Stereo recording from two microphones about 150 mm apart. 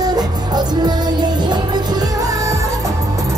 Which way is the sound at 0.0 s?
25° right (ahead or behind).